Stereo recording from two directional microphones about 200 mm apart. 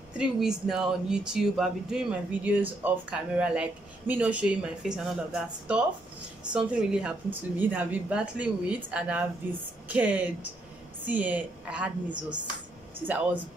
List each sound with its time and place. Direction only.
0.2 s a woman's voice: 5° right (ahead or behind)
12.1 s speech: 20° right (ahead or behind)
13.0 s a woman's voice: 10° right (ahead or behind)